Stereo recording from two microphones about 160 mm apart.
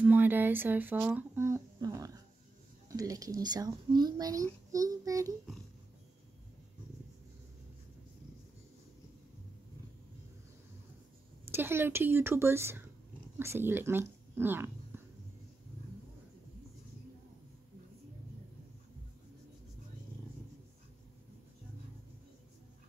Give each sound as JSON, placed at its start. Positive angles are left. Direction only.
{"t": 0.0, "sound": "a child's voice", "side_deg": -10}
{"t": 11.5, "sound": "a woman's voice", "side_deg": -15}
{"t": 14.9, "sound": "a sound", "side_deg": -15}